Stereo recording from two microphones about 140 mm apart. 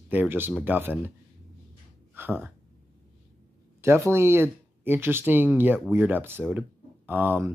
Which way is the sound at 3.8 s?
20° right (ahead or behind).